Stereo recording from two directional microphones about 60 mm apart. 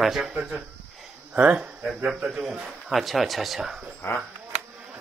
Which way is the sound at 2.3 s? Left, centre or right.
Centre.